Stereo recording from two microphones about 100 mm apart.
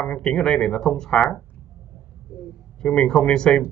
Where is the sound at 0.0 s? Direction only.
5° left (ahead or behind).